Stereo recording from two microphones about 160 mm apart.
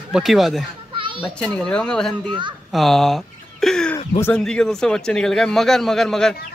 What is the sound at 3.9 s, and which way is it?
Speech, 20° left (ahead or behind).